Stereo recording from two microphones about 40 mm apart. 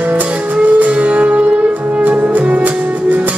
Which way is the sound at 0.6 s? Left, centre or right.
Right.